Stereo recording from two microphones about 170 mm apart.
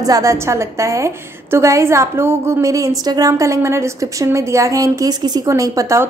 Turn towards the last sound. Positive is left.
turn(degrees=-20)  # may be behind; listen again after turning